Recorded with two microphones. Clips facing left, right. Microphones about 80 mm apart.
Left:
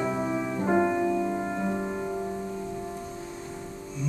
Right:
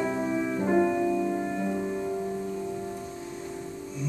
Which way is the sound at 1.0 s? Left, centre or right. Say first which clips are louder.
Even; centre.